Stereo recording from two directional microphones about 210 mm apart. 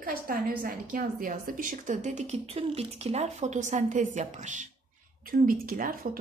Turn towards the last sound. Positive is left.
turn(degrees=-40)  # may be behind; listen again after turning